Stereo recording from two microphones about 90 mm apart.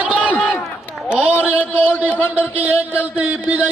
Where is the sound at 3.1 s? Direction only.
15° right (ahead or behind).